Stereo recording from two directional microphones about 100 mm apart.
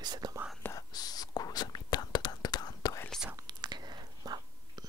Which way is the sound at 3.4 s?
45° right (ahead or behind).